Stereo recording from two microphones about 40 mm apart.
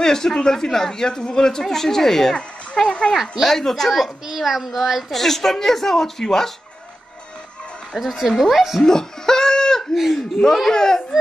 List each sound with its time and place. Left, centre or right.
0.0 s speech: centre
2.9 s a child's voice: left
3.2 s speech: centre
3.5 s speech: centre
3.9 s a child's voice: centre
5.1 s speech: centre
7.9 s a child's voice: centre
8.3 s speech: centre
8.8 s chuckle: centre
10.1 s speech: centre